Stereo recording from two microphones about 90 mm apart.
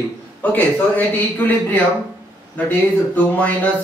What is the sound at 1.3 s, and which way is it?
Speech, 20° left (ahead or behind).